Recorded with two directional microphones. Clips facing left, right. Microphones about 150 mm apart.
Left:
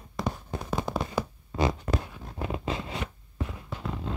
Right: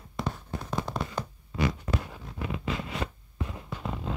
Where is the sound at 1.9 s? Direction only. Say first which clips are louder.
Left 2 dB; 35° left (ahead or behind).